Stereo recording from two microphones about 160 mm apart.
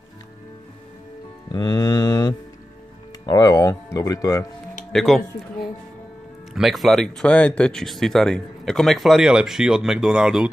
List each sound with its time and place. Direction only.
1.5 s music: 25° left (ahead or behind)
3.3 s speech: 20° left (ahead or behind)
4.9 s speech: centre (ahead or behind)
6.5 s speech: centre (ahead or behind)